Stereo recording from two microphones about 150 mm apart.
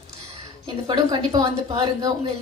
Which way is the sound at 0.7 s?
30° right (ahead or behind).